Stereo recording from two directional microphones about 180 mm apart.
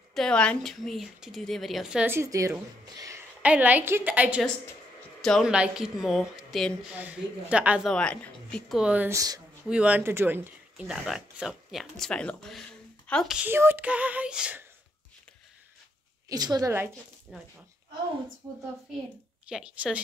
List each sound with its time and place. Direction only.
0.1 s speech: 5° left (ahead or behind); by 2.5 s 15° right (ahead or behind)
2.8 s a sound: 20° right (ahead or behind)
3.4 s a woman's voice: 10° right (ahead or behind)
7.9 s speech: 5° left (ahead or behind); by 9.4 s 20° right (ahead or behind)
9.7 s a woman's voice: 5° right (ahead or behind)
16.3 s a woman's voice: 20° right (ahead or behind)
17.3 s speech: 5° right (ahead or behind)
19.4 s speech: 5° right (ahead or behind)